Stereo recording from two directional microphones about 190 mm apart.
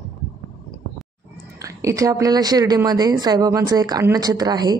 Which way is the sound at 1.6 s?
15° right (ahead or behind).